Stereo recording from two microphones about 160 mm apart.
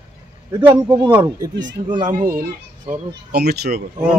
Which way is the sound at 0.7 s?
30° right (ahead or behind).